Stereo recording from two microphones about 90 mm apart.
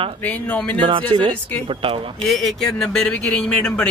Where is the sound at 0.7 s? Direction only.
70° right (ahead or behind).